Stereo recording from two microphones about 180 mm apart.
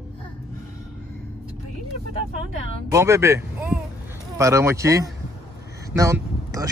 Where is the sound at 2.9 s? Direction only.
15° right (ahead or behind).